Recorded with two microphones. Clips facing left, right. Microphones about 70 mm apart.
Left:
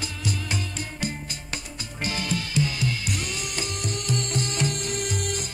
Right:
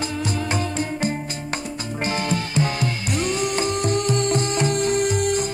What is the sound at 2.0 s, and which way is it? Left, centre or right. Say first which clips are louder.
Music: right 5 dB; right.